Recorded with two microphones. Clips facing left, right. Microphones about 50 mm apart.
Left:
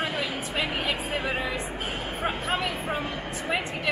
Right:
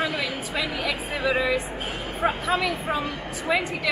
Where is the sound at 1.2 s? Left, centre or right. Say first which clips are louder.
Right 6 dB; right.